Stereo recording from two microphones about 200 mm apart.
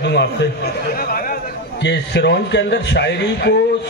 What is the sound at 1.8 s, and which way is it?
A man's voice, 60° left (ahead or behind).